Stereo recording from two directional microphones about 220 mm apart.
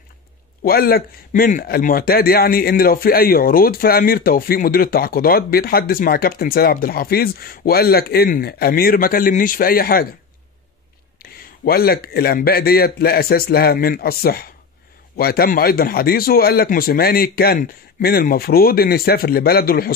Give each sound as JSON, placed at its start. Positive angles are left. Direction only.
{"t": 0.7, "sound": "speech", "side_deg": 45}
{"t": 11.2, "sound": "speech", "side_deg": 45}